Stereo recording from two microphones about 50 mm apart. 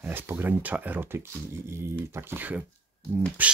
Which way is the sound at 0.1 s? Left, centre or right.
Right.